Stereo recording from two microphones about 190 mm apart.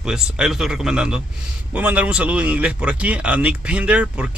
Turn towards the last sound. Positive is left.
turn(degrees=-5)  # may be behind; listen again after turning